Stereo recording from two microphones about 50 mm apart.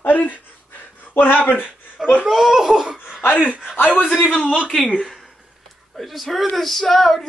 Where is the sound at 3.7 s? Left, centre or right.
Left.